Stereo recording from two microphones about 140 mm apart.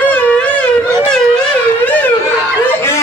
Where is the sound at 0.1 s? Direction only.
10° left (ahead or behind).